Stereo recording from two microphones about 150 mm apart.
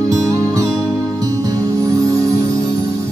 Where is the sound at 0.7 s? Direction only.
5° left (ahead or behind).